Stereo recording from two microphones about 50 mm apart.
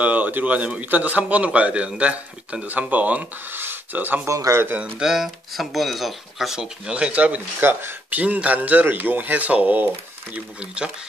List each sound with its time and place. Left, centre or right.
0.0 s a man's voice: right
4.3 s speech: right
5.0 s speech: centre; by 7.4 s right
7.6 s speech: right
8.5 s speech: right
10.3 s a man's voice: right